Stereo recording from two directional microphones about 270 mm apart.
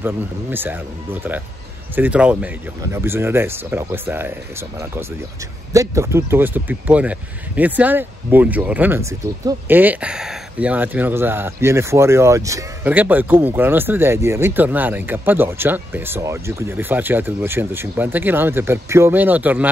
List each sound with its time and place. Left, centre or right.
0.0 s speech: centre